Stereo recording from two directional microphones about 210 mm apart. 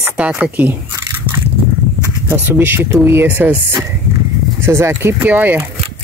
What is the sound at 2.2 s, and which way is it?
Speech, 10° right (ahead or behind).